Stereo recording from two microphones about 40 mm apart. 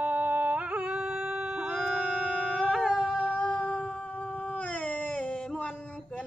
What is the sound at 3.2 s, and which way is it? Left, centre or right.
Music, left.